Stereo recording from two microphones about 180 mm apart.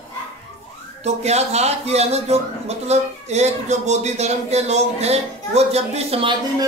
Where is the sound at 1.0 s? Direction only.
35° right (ahead or behind).